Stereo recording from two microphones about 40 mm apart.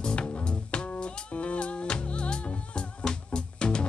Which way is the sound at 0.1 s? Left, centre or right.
Left.